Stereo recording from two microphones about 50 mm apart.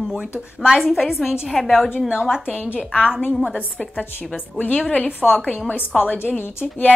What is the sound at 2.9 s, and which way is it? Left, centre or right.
Speech, centre.